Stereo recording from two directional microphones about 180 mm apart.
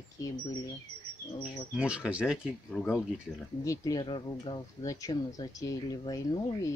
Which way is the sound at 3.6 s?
20° left (ahead or behind).